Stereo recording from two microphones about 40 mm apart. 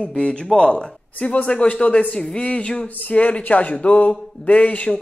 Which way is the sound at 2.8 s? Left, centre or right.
Left.